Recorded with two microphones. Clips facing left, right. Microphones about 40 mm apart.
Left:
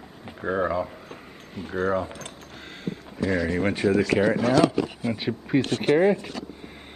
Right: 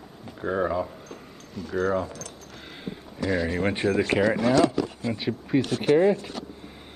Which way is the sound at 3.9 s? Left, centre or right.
Right.